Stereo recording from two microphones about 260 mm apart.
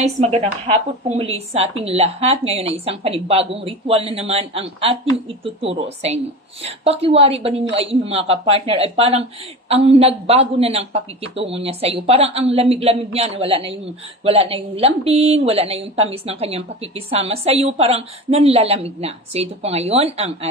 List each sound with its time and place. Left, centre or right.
0.0 s speech: right